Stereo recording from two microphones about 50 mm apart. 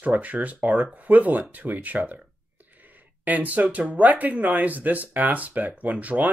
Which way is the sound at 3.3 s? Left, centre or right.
Right.